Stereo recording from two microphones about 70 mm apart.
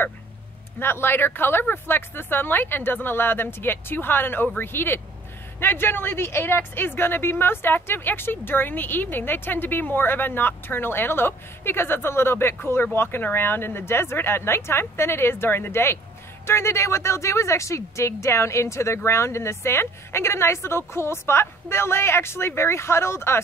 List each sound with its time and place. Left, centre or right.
0.7 s a woman's voice: left